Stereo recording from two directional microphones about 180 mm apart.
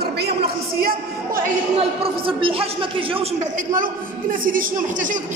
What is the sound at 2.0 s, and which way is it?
A man's voice, 30° right (ahead or behind).